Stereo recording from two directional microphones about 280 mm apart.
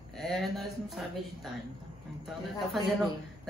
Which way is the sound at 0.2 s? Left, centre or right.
Centre.